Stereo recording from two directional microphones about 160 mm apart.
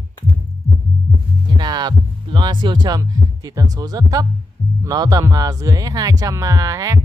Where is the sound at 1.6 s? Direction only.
25° right (ahead or behind).